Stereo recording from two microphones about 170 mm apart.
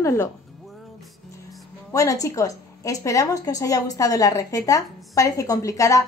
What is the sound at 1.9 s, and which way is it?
A woman's voice, 20° left (ahead or behind).